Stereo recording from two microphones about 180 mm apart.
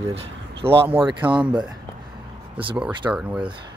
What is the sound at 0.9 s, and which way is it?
Speech, 30° right (ahead or behind).